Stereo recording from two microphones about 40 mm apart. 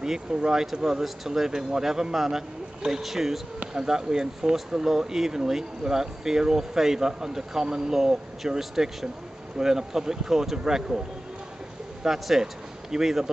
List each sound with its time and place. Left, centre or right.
0.0 s speech: centre
12.0 s speech: centre